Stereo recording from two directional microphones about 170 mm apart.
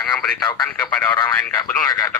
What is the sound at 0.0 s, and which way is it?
Speech, 5° left (ahead or behind).